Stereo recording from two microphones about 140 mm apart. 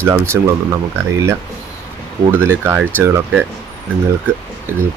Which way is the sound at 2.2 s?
15° right (ahead or behind).